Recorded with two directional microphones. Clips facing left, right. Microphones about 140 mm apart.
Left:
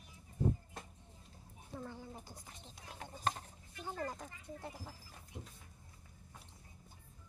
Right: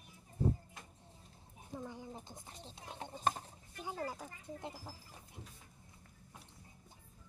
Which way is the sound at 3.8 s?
10° right (ahead or behind).